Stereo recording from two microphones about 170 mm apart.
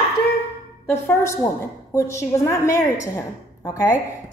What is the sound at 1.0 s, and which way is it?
A woman's voice, 15° left (ahead or behind).